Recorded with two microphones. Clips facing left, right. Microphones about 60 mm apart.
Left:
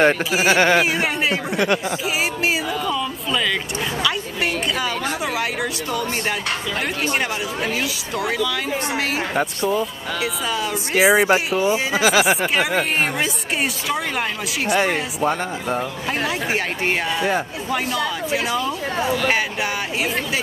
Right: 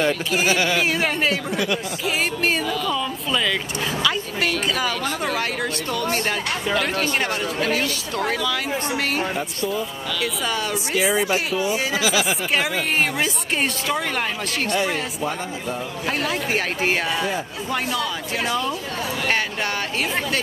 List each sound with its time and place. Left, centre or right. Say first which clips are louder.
0.4 s speech: left 5 dB; left
0.8 s speech: even; centre
5.2 s speech: left 1 dB; centre
6.8 s speech: even; centre
7.2 s speech: even; centre
10.2 s speech: left 1 dB; centre
11.0 s speech: left 6 dB; left
12.0 s speech: left 7 dB; left
13.2 s speech: even; centre
16.1 s speech: even; centre